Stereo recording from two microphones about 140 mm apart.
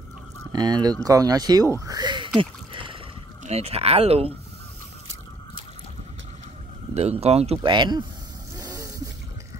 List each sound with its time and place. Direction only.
0.5 s speech: 30° right (ahead or behind); by 4.3 s 45° right (ahead or behind)
6.9 s speech: 50° right (ahead or behind)
7.6 s speech: 35° right (ahead or behind)
8.5 s vehicle: 25° right (ahead or behind)